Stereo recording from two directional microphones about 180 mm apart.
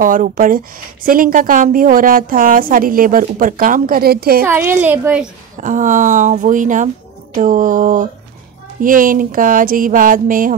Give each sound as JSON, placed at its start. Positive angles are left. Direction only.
{"t": 0.0, "sound": "speech", "side_deg": -50}
{"t": 4.5, "sound": "a woman's voice", "side_deg": -15}
{"t": 5.6, "sound": "speech", "side_deg": -45}